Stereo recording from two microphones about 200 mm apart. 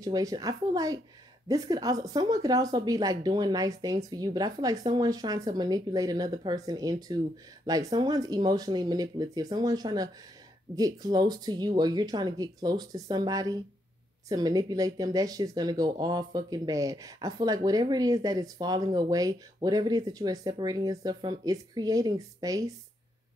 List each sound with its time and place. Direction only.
0.0 s a woman's voice: 15° right (ahead or behind)